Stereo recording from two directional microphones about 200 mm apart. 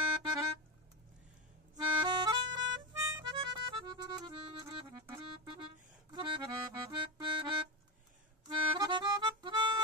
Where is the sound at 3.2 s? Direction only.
25° right (ahead or behind).